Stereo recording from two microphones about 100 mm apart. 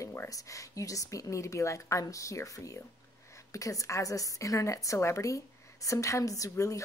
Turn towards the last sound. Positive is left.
turn(degrees=35)  # may be behind; listen again after turning